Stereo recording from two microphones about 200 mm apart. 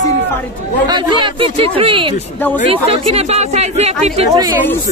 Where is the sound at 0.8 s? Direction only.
20° right (ahead or behind).